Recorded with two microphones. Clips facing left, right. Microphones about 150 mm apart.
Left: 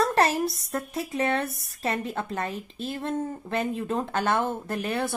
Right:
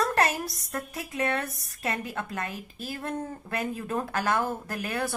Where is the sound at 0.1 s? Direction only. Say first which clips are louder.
Left 3 dB; 30° left (ahead or behind).